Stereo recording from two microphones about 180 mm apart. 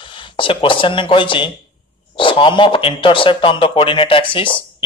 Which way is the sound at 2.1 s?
30° left (ahead or behind).